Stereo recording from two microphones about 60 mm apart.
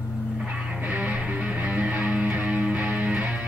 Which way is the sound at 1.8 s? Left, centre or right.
Right.